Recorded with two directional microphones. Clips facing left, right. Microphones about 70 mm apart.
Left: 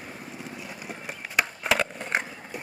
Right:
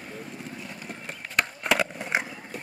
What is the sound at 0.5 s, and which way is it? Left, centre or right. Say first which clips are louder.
Skateboard: left 1 dB; centre.